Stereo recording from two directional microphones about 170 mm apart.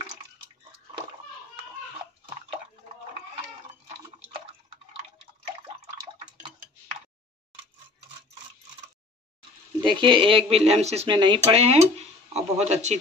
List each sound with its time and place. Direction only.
3.8 s a sound: 35° right (ahead or behind)
9.8 s speech: 30° right (ahead or behind)
11.1 s speech: 25° right (ahead or behind)